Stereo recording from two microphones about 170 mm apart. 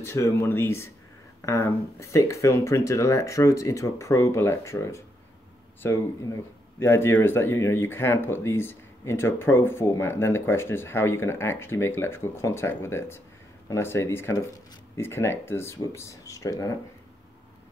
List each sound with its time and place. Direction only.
0.0 s speech: 15° left (ahead or behind)